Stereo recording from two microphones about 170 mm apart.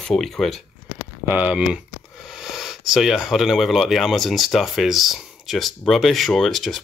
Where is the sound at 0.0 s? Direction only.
Centre (ahead or behind).